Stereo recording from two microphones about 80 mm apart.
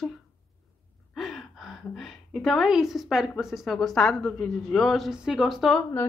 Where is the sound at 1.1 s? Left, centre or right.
Centre.